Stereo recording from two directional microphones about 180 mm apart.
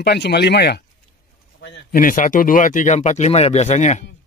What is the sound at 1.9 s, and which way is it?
Speech, 50° left (ahead or behind).